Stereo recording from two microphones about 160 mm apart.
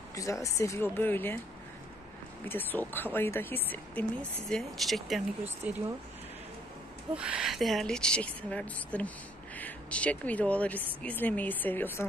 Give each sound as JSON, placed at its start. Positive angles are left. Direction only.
{"t": 0.1, "sound": "speech", "side_deg": 20}
{"t": 2.4, "sound": "speech", "side_deg": 10}
{"t": 7.2, "sound": "a woman's voice", "side_deg": -5}